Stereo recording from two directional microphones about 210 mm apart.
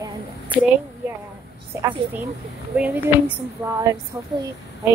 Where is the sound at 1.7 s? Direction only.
10° right (ahead or behind).